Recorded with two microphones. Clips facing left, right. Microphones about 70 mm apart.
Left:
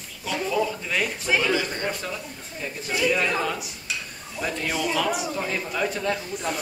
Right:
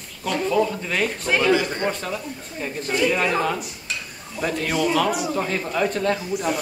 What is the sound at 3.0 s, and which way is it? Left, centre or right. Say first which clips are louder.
Speech: right 2 dB; right.